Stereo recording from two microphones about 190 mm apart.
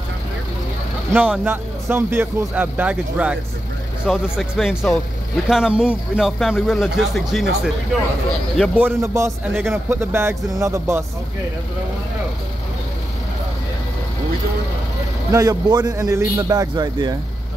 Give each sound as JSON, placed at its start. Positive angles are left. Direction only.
{"t": 1.1, "sound": "a man's voice", "side_deg": -5}
{"t": 15.3, "sound": "a man's voice", "side_deg": -20}